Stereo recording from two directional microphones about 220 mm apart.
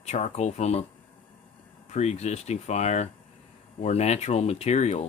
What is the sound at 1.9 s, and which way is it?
Speech, 30° left (ahead or behind).